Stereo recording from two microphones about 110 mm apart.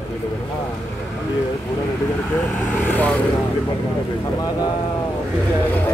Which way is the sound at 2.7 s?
15° left (ahead or behind).